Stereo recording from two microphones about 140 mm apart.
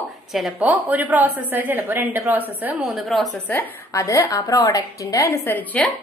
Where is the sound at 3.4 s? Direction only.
15° left (ahead or behind).